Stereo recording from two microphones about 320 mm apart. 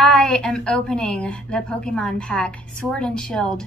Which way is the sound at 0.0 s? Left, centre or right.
Centre.